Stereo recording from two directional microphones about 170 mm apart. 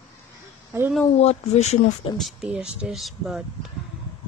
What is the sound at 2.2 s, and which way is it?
Speech, centre (ahead or behind).